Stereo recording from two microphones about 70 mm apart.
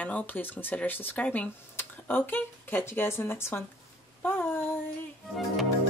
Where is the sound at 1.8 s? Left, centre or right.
Left.